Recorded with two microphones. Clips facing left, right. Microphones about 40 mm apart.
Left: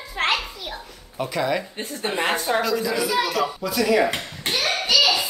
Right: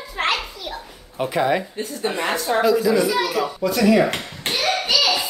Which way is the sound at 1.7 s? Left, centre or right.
Left.